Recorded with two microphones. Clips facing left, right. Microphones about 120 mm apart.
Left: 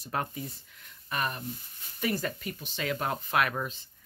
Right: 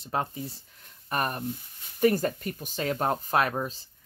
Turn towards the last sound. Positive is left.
turn(degrees=-35)  # may be behind; listen again after turning